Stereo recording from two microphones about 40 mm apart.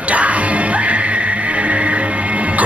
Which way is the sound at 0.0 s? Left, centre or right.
Right.